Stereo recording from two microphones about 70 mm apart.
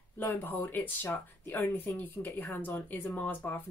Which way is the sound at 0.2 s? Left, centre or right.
Left.